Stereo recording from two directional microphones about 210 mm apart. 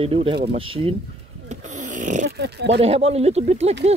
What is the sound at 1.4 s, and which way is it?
Snoring, 35° right (ahead or behind).